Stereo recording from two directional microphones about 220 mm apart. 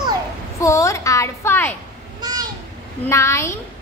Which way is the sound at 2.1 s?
20° right (ahead or behind).